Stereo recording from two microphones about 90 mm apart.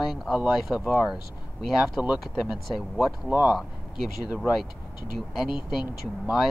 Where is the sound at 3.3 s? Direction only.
20° right (ahead or behind).